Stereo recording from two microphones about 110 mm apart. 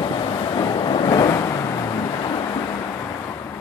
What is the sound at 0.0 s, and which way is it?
Vehicle, 40° left (ahead or behind).